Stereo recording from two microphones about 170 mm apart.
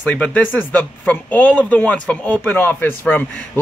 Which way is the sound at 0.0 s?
10° left (ahead or behind).